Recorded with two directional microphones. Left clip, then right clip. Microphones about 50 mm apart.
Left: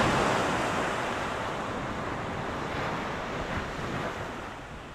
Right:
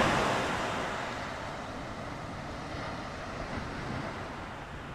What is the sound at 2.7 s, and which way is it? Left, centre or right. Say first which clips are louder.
Vehicle: left 6 dB; left.